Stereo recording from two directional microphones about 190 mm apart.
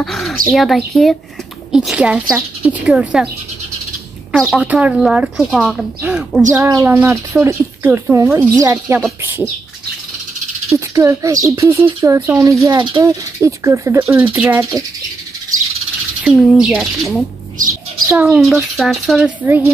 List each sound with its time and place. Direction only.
0.0 s speech: centre (ahead or behind)
4.3 s speech: 5° right (ahead or behind)
6.6 s speech: 15° right (ahead or behind)
9.2 s bird: 15° right (ahead or behind)
11.0 s speech: 15° right (ahead or behind)
16.3 s speech: centre (ahead or behind)
18.0 s speech: 10° right (ahead or behind)
18.4 s speech: centre (ahead or behind)
19.4 s speech: 10° right (ahead or behind)